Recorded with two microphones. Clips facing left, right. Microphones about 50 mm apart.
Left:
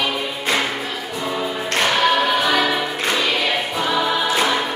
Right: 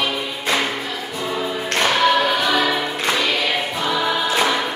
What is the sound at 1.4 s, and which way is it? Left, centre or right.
Music, centre.